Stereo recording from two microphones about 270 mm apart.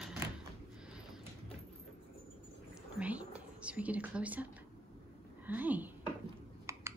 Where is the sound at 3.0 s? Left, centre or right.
Centre.